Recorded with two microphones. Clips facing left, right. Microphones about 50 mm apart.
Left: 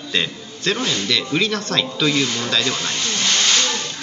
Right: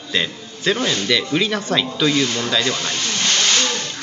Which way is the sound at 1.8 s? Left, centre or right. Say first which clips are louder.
Left 1 dB; centre.